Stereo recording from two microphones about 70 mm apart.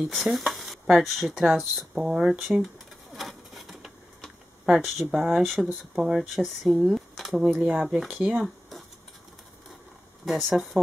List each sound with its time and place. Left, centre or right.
0.0 s stir: centre
5.1 s speech: centre
7.5 s speech: centre
8.4 s a sound: centre
10.2 s speech: centre